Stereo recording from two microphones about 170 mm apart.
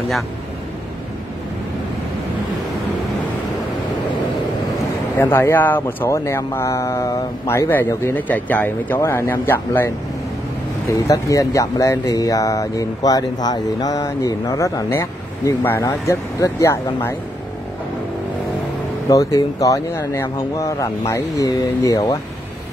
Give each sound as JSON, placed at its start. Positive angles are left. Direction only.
{"t": 5.1, "sound": "speech", "side_deg": 15}
{"t": 11.1, "sound": "speech", "side_deg": 20}
{"t": 19.0, "sound": "speech", "side_deg": 20}